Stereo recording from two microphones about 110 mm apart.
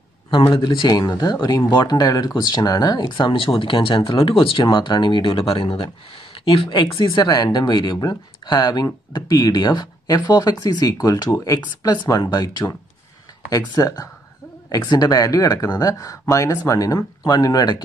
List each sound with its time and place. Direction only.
0.3 s speech: 45° left (ahead or behind)